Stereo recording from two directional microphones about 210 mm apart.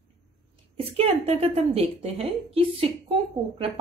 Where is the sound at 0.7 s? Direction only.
30° right (ahead or behind).